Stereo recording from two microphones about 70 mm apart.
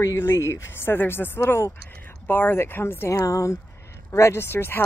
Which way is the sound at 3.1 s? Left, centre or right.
Left.